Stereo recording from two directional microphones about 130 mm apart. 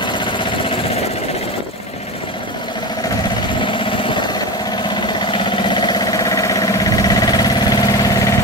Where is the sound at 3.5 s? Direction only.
40° left (ahead or behind).